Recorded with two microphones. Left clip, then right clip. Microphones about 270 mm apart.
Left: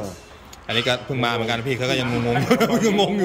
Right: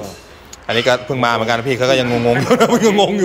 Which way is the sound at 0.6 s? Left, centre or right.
Centre.